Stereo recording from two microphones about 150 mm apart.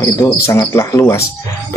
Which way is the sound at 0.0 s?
20° left (ahead or behind).